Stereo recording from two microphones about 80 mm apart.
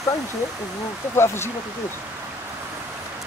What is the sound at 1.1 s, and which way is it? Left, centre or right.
Speech, left.